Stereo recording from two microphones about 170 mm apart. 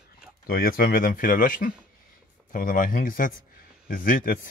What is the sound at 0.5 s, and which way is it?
Speech, 60° left (ahead or behind).